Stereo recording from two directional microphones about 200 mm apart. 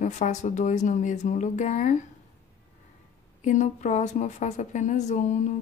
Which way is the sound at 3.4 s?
35° left (ahead or behind).